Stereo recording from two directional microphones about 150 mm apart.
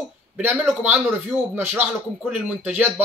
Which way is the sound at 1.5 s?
15° right (ahead or behind).